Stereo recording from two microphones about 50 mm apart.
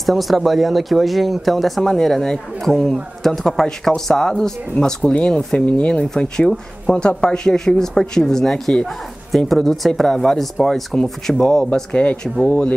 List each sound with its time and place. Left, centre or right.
0.0 s speech: centre; by 6.0 s left
6.0 s speech: centre
11.9 s speech: left